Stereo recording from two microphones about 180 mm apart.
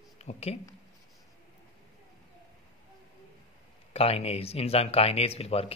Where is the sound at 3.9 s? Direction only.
35° left (ahead or behind).